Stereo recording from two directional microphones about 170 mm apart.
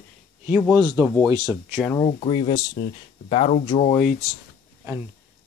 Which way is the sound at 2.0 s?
35° left (ahead or behind).